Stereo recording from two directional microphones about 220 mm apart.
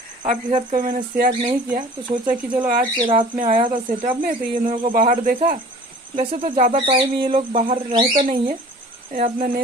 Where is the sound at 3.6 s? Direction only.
25° right (ahead or behind).